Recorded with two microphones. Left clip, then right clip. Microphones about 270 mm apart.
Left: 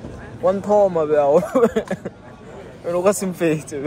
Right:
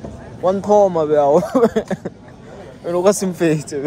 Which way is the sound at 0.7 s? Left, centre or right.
Right.